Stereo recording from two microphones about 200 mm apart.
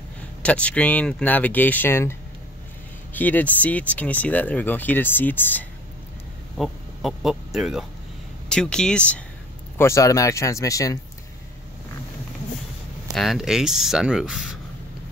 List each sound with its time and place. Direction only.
0.4 s speech: 5° left (ahead or behind)
6.6 s speech: centre (ahead or behind); by 11.0 s 15° left (ahead or behind)
13.1 s speech: centre (ahead or behind)